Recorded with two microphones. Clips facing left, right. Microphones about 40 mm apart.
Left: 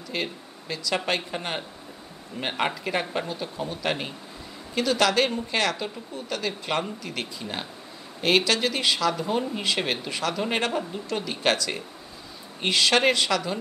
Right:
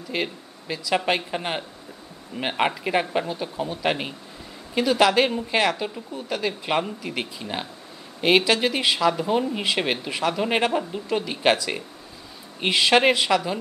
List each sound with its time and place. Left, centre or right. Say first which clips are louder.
0.1 s speech: right 3 dB; centre